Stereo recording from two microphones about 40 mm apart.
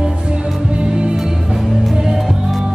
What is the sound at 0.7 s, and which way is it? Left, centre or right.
Music, right.